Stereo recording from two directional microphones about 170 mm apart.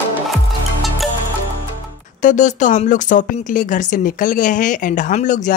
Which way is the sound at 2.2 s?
45° left (ahead or behind).